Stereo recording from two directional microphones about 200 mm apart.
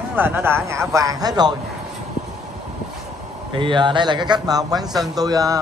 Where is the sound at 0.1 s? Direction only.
10° right (ahead or behind).